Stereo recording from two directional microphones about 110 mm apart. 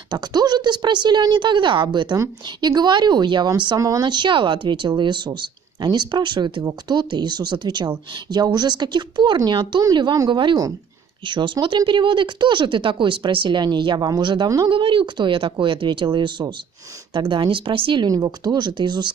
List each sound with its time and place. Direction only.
0.1 s a woman's voice: 40° right (ahead or behind)
18.0 s a woman's voice: 35° right (ahead or behind)